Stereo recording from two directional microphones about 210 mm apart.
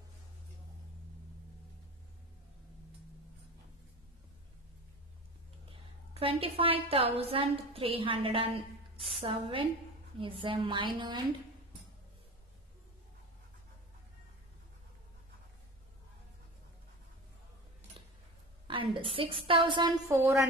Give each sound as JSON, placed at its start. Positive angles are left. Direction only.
{"t": 5.7, "sound": "a woman's voice", "side_deg": -25}
{"t": 18.7, "sound": "a woman's voice", "side_deg": -25}